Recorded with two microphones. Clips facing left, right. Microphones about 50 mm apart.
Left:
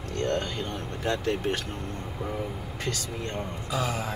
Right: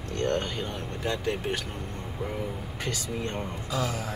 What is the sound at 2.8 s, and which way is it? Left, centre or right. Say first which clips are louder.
Speech: right 1 dB; right.